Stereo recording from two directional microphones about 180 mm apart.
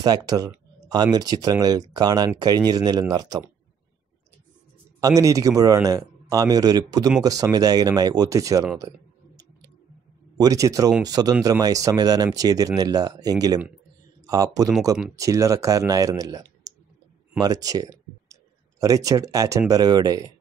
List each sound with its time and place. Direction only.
0.0 s speech: 20° right (ahead or behind)
5.0 s speech: 20° right (ahead or behind)
10.3 s speech: 20° right (ahead or behind)